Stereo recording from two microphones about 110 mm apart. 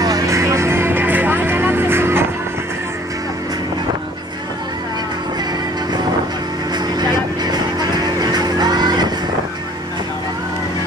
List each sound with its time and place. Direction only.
0.0 s music: 30° right (ahead or behind)
7.0 s music: 40° right (ahead or behind)